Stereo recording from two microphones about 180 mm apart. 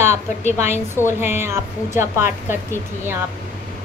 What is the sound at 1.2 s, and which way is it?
A woman's voice, 15° right (ahead or behind).